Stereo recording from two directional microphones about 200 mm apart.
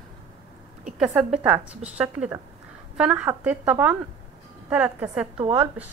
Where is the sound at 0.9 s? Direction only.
Centre (ahead or behind).